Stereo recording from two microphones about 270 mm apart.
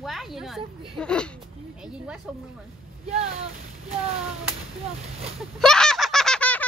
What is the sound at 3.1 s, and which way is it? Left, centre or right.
Speech, right.